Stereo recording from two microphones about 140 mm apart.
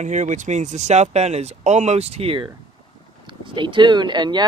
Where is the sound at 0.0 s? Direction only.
60° right (ahead or behind).